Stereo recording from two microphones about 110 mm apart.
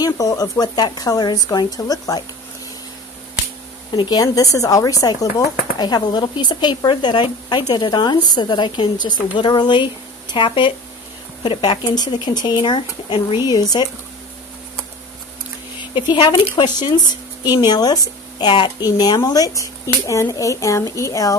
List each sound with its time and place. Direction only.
0.0 s speech: 35° left (ahead or behind)
3.9 s speech: 40° left (ahead or behind)
13.4 s speech: 35° left (ahead or behind)
15.8 s speech: 45° left (ahead or behind); by 21.4 s 30° left (ahead or behind)